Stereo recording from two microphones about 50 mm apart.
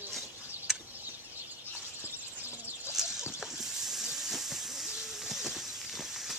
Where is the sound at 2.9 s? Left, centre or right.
Centre.